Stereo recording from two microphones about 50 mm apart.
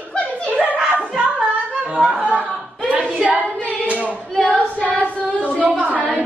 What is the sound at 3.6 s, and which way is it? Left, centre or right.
Hands, left.